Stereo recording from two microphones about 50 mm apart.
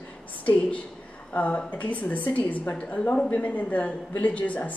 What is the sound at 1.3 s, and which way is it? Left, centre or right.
A woman's voice, left.